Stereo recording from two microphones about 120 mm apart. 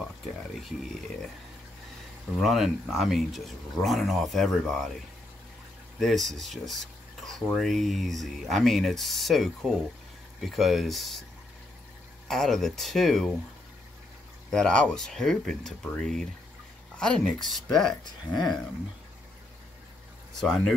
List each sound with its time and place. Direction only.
2.4 s speech: centre (ahead or behind)
5.9 s speech: centre (ahead or behind)
12.3 s speech: 5° left (ahead or behind)
14.5 s speech: 5° left (ahead or behind)
18.3 s speech: 35° left (ahead or behind)
20.3 s speech: centre (ahead or behind)